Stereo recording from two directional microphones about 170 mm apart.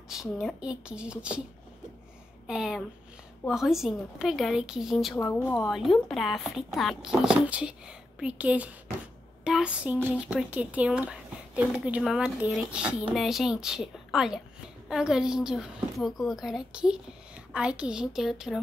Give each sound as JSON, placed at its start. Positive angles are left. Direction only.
{"t": 0.1, "sound": "speech", "side_deg": 0}
{"t": 2.4, "sound": "speech", "side_deg": -5}
{"t": 5.1, "sound": "speech", "side_deg": 15}
{"t": 5.7, "sound": "a child's voice", "side_deg": 0}